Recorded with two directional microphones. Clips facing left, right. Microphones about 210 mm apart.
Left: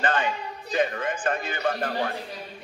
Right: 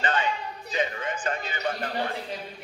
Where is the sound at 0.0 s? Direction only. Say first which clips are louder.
Left 2 dB; 55° left (ahead or behind).